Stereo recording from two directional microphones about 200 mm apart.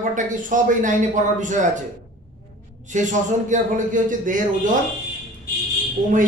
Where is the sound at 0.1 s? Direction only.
40° right (ahead or behind).